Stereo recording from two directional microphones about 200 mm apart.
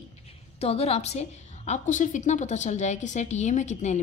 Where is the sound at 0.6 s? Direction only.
30° left (ahead or behind).